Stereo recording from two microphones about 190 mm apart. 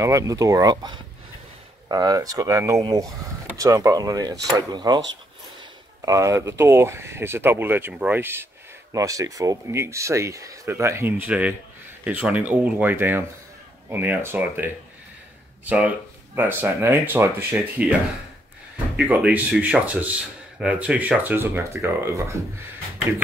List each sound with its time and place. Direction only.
0.0 s speech: 15° right (ahead or behind)
6.0 s speech: 15° right (ahead or behind)
18.9 s speech: 10° right (ahead or behind)